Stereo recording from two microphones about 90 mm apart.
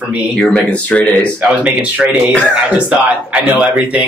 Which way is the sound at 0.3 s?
5° left (ahead or behind).